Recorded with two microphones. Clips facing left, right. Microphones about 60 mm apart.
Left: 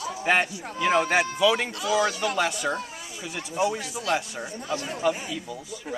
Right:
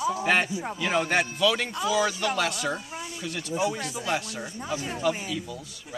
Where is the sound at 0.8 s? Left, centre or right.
Centre.